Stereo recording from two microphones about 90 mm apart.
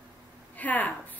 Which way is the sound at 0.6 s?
20° left (ahead or behind).